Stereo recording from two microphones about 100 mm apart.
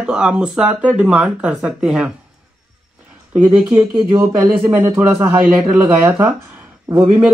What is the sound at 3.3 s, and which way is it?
Speech, 15° right (ahead or behind).